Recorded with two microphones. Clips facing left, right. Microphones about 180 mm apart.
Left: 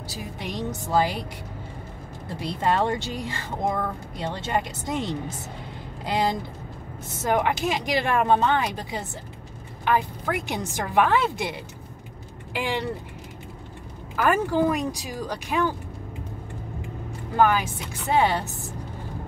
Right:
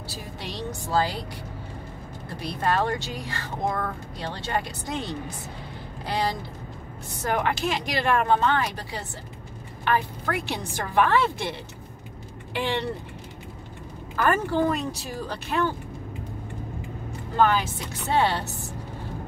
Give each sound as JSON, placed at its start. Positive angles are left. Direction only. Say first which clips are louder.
{"t": 0.1, "sound": "speech", "louder": "left 4 dB", "side_deg": 15}
{"t": 2.4, "sound": "speech", "louder": "left 1 dB", "side_deg": 20}
{"t": 12.5, "sound": "speech", "louder": "even", "side_deg": 5}
{"t": 14.1, "sound": "speech", "louder": "left 1 dB", "side_deg": 10}
{"t": 17.4, "sound": "speech", "louder": "left 1 dB", "side_deg": 10}